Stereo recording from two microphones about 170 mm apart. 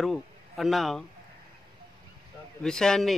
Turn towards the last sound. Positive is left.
turn(degrees=5)  # may be behind; listen again after turning